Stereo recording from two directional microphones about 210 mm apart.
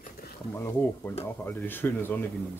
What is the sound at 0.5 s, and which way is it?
Speech, 15° left (ahead or behind).